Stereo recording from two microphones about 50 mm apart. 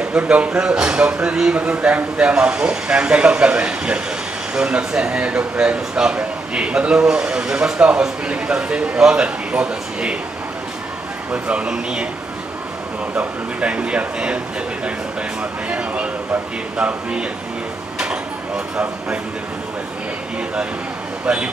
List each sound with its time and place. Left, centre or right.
0.1 s a man's voice: right
11.3 s a man's voice: right
13.1 s a man's voice: right
15.7 s a man's voice: right
21.3 s speech: centre